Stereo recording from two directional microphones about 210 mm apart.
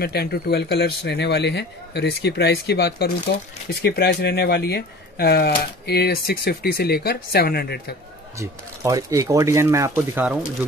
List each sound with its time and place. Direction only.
0.0 s speech: 50° left (ahead or behind)
8.4 s speech: 15° right (ahead or behind)